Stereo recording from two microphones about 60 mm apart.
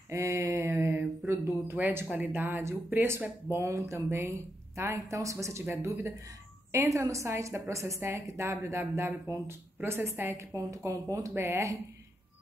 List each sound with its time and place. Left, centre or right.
0.1 s speech: right
1.8 s speech: right
5.7 s speech: right
10.5 s speech: right